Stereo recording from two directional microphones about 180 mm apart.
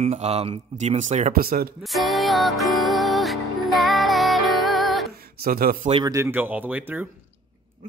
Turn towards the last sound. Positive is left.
turn(degrees=-10)  # may be behind; listen again after turning